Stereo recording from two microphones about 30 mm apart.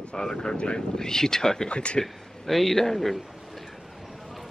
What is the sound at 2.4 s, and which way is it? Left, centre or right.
Speech, centre.